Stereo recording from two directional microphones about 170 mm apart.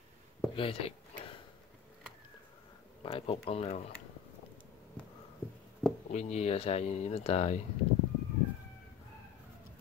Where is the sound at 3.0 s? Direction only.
35° left (ahead or behind).